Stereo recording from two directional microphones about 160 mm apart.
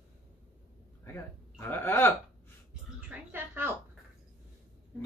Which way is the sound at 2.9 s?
10° right (ahead or behind).